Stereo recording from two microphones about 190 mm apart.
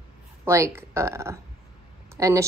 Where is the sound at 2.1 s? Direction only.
15° right (ahead or behind).